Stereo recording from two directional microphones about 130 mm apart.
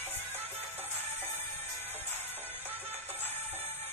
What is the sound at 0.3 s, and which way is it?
Music, 15° right (ahead or behind).